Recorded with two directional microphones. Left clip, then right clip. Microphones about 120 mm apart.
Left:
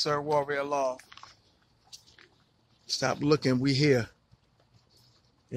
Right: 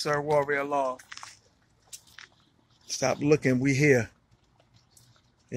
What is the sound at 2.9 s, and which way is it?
Speech, centre (ahead or behind).